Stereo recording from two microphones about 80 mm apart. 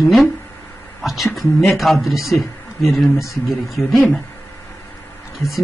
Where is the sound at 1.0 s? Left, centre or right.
Centre.